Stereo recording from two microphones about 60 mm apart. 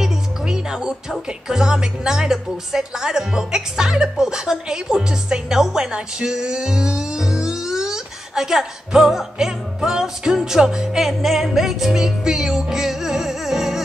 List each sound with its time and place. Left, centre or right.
0.0 s music: centre
1.5 s speech: centre